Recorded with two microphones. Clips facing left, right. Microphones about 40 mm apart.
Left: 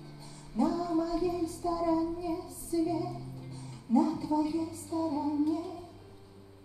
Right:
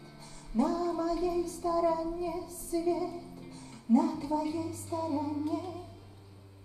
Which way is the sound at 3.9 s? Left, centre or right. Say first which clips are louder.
Even; centre.